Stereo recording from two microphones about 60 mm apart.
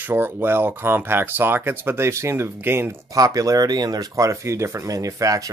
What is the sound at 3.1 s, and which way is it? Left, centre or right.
Speech, right.